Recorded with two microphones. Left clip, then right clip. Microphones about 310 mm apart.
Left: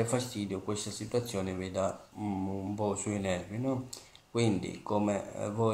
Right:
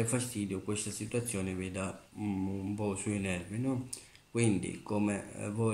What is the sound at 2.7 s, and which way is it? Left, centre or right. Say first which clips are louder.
Mantra: left 5 dB; left.